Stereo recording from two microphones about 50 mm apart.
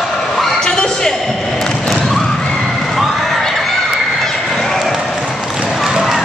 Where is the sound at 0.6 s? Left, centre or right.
Centre.